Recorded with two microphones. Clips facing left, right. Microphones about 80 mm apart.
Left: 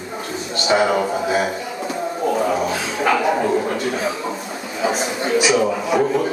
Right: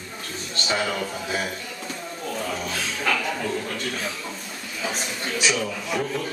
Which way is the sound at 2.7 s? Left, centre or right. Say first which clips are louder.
Left 7 dB; left.